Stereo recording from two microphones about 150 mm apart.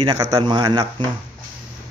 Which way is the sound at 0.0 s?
25° right (ahead or behind).